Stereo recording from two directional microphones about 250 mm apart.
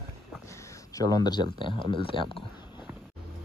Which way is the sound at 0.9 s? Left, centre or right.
Centre.